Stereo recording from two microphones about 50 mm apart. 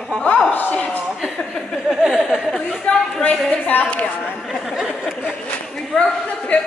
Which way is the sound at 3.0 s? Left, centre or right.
Centre.